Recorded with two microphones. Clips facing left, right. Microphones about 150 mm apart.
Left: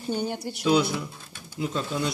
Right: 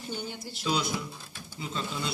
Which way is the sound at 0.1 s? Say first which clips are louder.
Left 10 dB; 55° left (ahead or behind).